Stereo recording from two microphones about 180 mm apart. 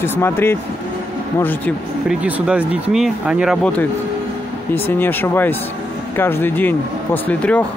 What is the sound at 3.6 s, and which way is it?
Speech, 5° left (ahead or behind).